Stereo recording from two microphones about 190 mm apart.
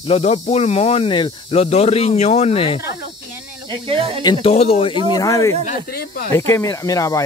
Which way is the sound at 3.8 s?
30° right (ahead or behind).